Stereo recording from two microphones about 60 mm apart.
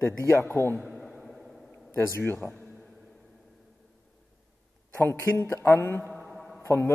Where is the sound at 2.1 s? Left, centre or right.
Left.